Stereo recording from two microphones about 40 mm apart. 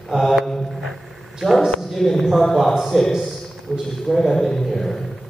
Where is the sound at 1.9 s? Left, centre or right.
Centre.